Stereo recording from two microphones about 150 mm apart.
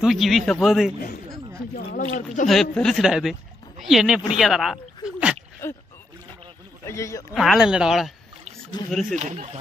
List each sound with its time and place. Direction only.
0.0 s speech: centre (ahead or behind)
1.9 s speech: 65° left (ahead or behind)
2.4 s speech: centre (ahead or behind)
4.4 s a sound: centre (ahead or behind)
5.6 s speech: 15° left (ahead or behind)
6.9 s speech: 20° left (ahead or behind)
7.3 s speech: centre (ahead or behind)
8.8 s speech: 30° left (ahead or behind)
9.1 s speech: 50° right (ahead or behind)